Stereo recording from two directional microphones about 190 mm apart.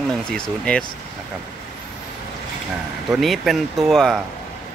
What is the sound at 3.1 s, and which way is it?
Speech, centre (ahead or behind).